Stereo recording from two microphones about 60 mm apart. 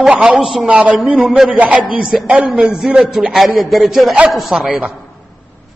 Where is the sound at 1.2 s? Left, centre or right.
Centre.